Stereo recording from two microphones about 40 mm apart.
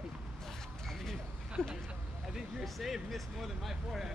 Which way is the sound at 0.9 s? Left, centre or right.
Centre.